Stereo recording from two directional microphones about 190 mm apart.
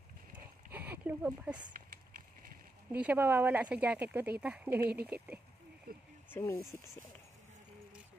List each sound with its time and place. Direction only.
0.7 s a sound: 10° right (ahead or behind)
2.9 s speech: 10° right (ahead or behind)
5.9 s speech: 50° right (ahead or behind)
6.3 s speech: 15° left (ahead or behind)